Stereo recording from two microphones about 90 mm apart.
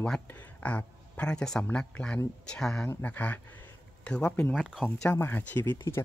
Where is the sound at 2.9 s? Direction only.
20° left (ahead or behind).